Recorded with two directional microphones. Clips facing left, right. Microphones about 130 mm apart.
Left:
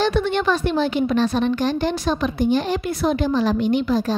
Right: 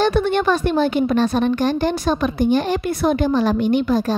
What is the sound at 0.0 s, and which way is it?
A woman's voice, 50° right (ahead or behind).